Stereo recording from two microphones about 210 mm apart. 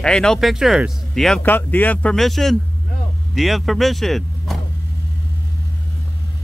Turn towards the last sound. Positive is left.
turn(degrees=0)  # may be behind; listen again after turning